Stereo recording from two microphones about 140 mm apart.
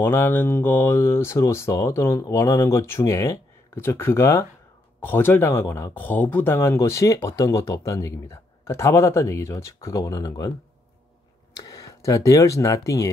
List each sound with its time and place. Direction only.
0.0 s speech: 15° left (ahead or behind)
11.6 s speech: 25° left (ahead or behind)